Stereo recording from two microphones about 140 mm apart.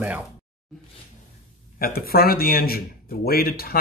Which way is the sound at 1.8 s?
90° left.